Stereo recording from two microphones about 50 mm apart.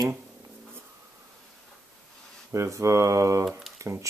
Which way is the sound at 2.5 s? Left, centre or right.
Right.